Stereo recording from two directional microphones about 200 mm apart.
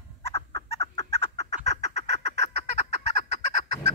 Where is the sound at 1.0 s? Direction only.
30° left (ahead or behind).